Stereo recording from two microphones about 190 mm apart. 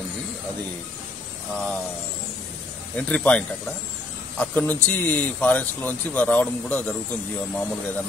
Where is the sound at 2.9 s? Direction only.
5° left (ahead or behind).